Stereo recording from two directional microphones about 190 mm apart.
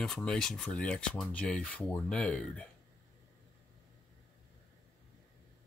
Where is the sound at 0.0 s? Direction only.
5° left (ahead or behind).